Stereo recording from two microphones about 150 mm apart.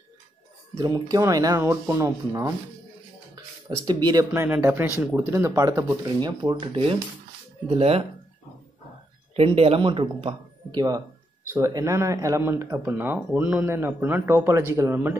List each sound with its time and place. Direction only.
0.7 s speech: 25° right (ahead or behind)
3.8 s speech: 30° right (ahead or behind)
9.3 s speech: 40° right (ahead or behind); by 15.1 s 15° right (ahead or behind)